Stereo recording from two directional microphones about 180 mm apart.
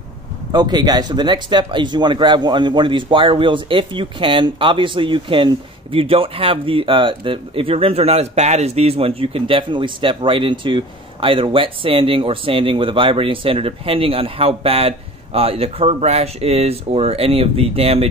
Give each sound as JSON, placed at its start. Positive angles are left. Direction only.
{"t": 0.5, "sound": "speech", "side_deg": -25}